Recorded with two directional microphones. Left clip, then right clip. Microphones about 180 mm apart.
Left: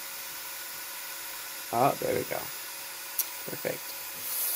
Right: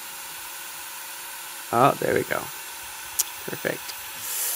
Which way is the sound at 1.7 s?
75° right (ahead or behind).